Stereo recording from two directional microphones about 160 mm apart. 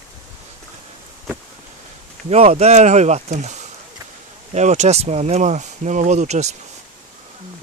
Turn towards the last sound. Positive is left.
turn(degrees=-45)  # may be behind; listen again after turning